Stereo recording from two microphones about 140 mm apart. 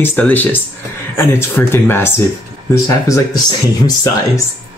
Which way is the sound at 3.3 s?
30° left (ahead or behind).